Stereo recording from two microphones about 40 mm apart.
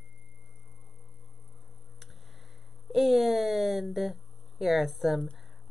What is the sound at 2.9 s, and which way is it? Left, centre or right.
Speech, centre.